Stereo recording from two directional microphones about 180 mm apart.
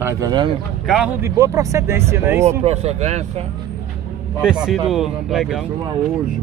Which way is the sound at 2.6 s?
35° right (ahead or behind).